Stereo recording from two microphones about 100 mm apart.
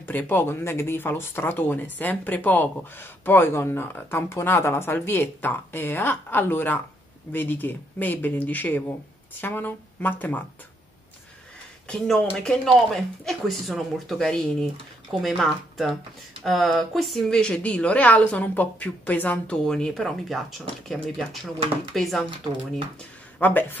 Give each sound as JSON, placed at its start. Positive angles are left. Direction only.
{"t": 0.0, "sound": "a woman's voice", "side_deg": 20}
{"t": 11.9, "sound": "a woman's voice", "side_deg": 5}
{"t": 23.4, "sound": "speech", "side_deg": 20}